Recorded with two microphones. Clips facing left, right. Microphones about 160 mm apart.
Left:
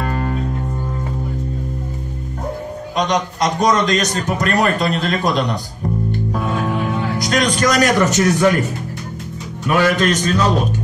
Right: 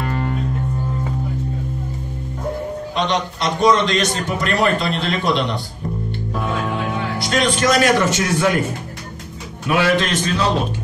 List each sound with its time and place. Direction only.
3.0 s a man's voice: 45° left (ahead or behind)
7.2 s a man's voice: 45° left (ahead or behind)
9.7 s a man's voice: 45° left (ahead or behind)